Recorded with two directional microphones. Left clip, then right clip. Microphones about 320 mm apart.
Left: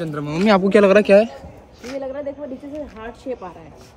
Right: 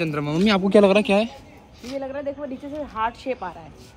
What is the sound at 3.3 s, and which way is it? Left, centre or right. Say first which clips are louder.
Speech: even; right.